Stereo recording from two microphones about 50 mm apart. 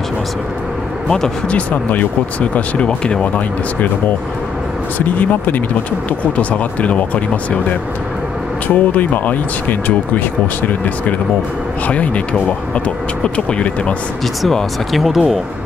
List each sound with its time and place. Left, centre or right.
1.0 s speech: centre
1.5 s speech: left
4.9 s speech: left
8.7 s speech: left
11.9 s speech: left
14.5 s speech: centre